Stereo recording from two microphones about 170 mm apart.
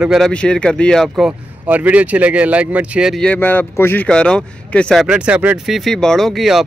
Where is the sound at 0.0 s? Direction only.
Centre (ahead or behind).